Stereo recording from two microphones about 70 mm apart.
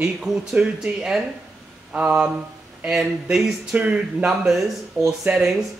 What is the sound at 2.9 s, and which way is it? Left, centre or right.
Speech, centre.